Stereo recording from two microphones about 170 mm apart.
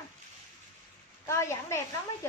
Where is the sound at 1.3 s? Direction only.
15° left (ahead or behind).